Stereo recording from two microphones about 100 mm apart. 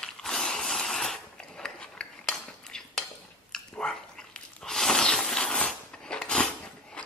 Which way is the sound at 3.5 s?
5° left (ahead or behind).